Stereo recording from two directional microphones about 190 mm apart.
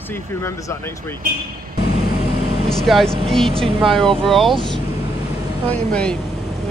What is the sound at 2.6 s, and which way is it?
Speech, centre (ahead or behind).